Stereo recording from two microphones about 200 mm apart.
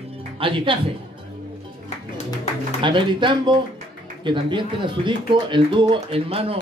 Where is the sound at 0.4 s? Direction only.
25° right (ahead or behind).